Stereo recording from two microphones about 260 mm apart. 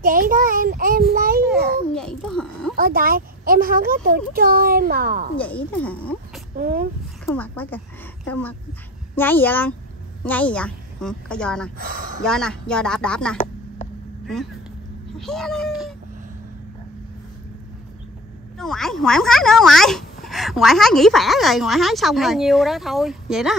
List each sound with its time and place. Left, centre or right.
0.0 s a child's voice: right
1.5 s babbling: centre
2.8 s a child's voice: right
5.7 s speech: centre
6.5 s a child's voice: right
7.2 s speech: centre
11.8 s a child's voice: right
12.3 s speech: centre
18.6 s speech: centre